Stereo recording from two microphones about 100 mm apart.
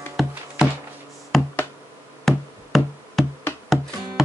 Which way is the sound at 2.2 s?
Centre (ahead or behind).